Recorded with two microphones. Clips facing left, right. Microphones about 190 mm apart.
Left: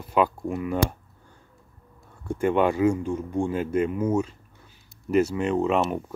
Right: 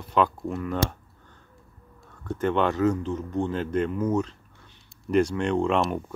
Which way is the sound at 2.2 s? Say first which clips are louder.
Left 2 dB; 10° left (ahead or behind).